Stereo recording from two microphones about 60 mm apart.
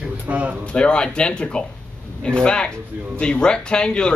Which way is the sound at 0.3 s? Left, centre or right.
Right.